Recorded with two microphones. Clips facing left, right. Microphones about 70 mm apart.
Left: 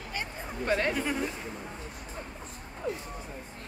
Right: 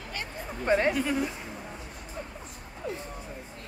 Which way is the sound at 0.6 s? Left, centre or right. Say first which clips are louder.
Right 4 dB; right.